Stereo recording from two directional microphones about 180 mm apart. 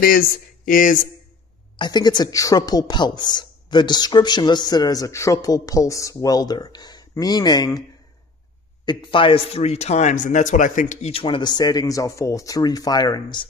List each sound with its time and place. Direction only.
0.0 s speech: 55° left (ahead or behind)
1.8 s speech: 25° left (ahead or behind)
8.8 s speech: 30° left (ahead or behind)